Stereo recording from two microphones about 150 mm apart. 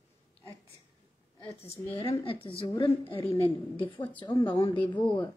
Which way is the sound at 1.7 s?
20° left (ahead or behind).